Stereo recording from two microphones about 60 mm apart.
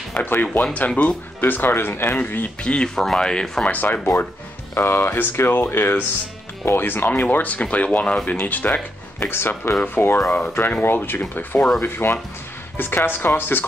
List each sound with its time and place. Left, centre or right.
0.1 s speech: left
0.7 s speech: left
1.4 s speech: left
2.6 s speech: centre
3.7 s speech: left
9.3 s speech: left